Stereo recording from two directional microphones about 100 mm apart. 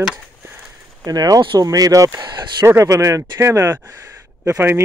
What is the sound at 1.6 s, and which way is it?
Speech, 35° right (ahead or behind).